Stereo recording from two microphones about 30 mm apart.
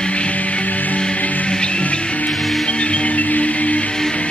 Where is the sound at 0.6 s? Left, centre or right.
Left.